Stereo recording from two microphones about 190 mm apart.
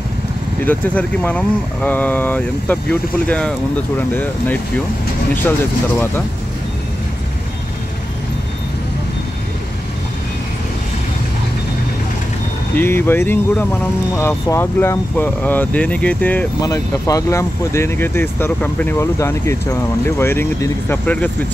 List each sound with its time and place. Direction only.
0.7 s speech: 10° left (ahead or behind)
12.7 s speech: 10° left (ahead or behind)